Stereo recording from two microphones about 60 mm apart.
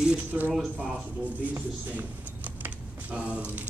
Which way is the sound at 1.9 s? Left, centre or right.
Right.